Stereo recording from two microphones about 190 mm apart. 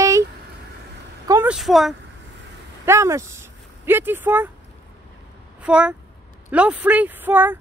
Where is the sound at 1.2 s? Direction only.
15° right (ahead or behind).